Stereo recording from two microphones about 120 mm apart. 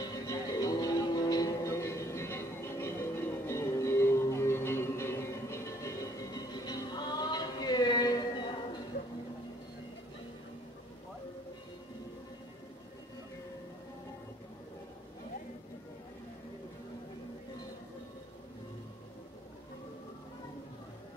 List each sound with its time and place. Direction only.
0.0 s music: 30° left (ahead or behind)